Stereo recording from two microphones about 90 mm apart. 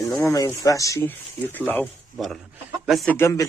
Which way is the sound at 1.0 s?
20° left (ahead or behind).